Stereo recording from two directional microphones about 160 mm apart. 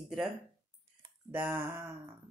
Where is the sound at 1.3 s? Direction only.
15° right (ahead or behind).